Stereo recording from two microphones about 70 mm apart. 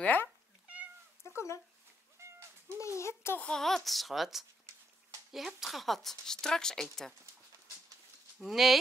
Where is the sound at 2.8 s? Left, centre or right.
Left.